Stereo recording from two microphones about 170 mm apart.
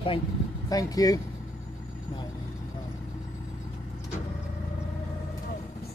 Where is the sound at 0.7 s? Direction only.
20° left (ahead or behind).